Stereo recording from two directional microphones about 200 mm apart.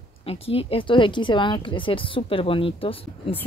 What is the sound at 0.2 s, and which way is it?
Speech, 30° left (ahead or behind).